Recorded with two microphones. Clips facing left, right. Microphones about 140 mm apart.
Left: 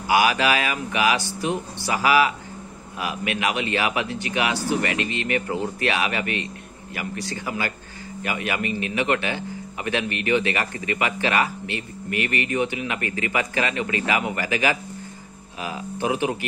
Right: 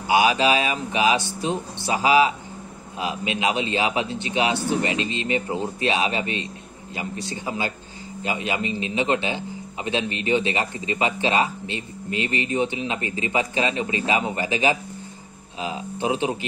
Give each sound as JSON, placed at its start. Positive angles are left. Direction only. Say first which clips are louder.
{"t": 0.0, "sound": "a man's voice", "louder": "right 1 dB", "side_deg": -25}